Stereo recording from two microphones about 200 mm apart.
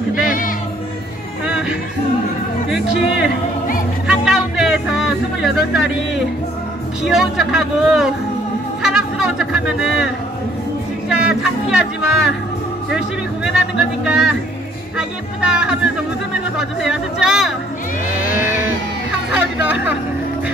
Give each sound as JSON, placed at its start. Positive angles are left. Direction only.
{"t": 0.1, "sound": "music", "side_deg": 45}
{"t": 4.1, "sound": "music", "side_deg": -5}
{"t": 7.1, "sound": "speech", "side_deg": 0}
{"t": 8.8, "sound": "a sound", "side_deg": -5}
{"t": 11.1, "sound": "speech", "side_deg": -5}
{"t": 18.2, "sound": "a sound", "side_deg": -10}